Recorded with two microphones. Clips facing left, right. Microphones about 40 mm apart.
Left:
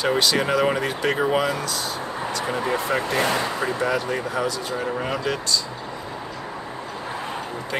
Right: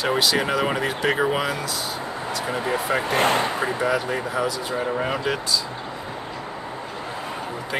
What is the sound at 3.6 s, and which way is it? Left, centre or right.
Speech, centre.